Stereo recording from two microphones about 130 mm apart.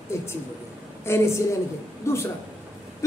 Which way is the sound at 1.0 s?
20° left (ahead or behind).